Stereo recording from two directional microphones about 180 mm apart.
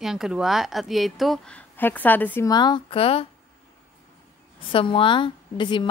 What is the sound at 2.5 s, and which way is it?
Speech, 25° left (ahead or behind).